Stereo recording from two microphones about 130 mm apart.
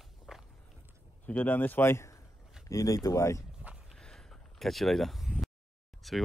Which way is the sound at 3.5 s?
5° right (ahead or behind).